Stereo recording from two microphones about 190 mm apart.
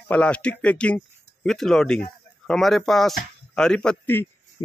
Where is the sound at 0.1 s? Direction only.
5° left (ahead or behind).